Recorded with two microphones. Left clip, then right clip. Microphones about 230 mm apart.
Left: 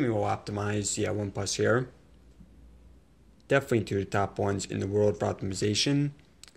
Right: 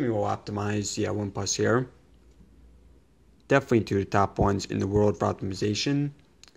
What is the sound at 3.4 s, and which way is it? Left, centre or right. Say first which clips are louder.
Speech: right 3 dB; right.